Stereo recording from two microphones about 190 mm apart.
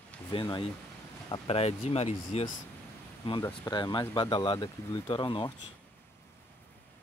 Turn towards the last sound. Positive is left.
turn(degrees=25)  # may be behind; listen again after turning